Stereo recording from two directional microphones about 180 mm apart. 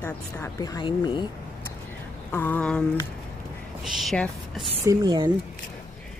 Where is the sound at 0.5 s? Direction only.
20° left (ahead or behind).